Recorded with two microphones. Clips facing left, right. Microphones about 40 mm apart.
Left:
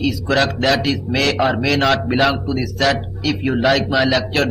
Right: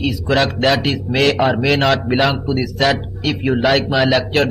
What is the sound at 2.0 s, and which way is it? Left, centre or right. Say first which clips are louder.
Speech: even; centre.